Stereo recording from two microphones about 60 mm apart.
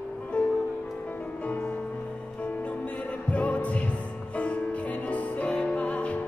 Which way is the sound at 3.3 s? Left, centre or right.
Left.